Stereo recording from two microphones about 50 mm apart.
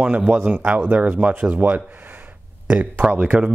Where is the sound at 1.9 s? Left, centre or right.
Right.